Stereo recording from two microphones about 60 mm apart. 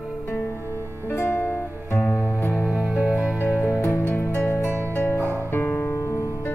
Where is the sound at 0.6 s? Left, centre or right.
Right.